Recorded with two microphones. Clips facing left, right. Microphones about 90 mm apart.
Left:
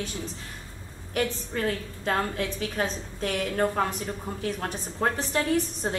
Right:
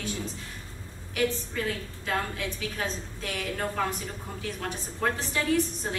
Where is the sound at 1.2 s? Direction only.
45° left (ahead or behind).